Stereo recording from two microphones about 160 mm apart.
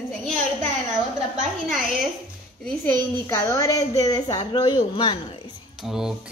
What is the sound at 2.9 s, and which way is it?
A woman's voice, 20° left (ahead or behind).